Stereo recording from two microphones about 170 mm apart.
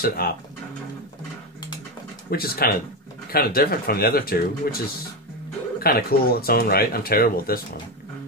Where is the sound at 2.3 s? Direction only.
65° left (ahead or behind).